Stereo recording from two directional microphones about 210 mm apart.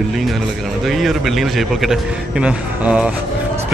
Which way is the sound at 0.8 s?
Centre (ahead or behind).